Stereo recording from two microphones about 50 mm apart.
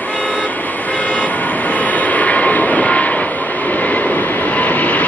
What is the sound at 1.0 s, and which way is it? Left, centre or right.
Vehicle, left.